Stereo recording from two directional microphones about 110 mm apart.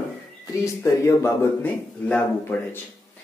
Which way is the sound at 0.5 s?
30° left (ahead or behind).